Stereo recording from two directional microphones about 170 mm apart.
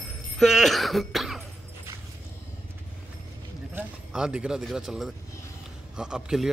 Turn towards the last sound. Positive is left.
turn(degrees=-5)  # may be behind; listen again after turning